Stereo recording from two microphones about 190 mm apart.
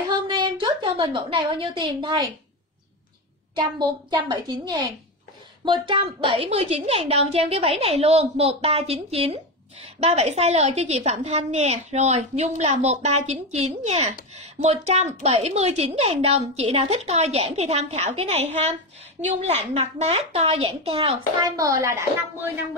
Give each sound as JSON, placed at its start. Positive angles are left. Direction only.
{"t": 0.1, "sound": "a sound", "side_deg": -25}
{"t": 3.5, "sound": "a woman's voice", "side_deg": -25}
{"t": 21.4, "sound": "a woman's voice", "side_deg": -20}